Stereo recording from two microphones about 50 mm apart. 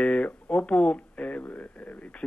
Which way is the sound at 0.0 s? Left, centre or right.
Left.